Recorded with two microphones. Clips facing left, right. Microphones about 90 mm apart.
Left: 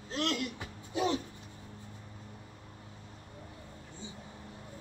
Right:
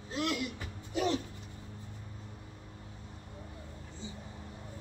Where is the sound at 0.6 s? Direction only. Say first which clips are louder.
Left 1 dB; 15° left (ahead or behind).